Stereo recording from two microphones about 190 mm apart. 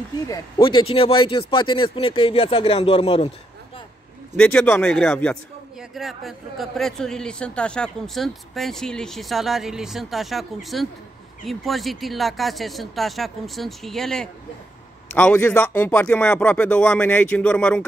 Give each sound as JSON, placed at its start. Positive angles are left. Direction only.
{"t": 0.3, "sound": "speech", "side_deg": 25}
{"t": 4.4, "sound": "a man's voice", "side_deg": 10}